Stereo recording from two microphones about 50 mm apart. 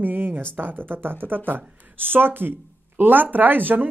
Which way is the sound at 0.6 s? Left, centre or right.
Right.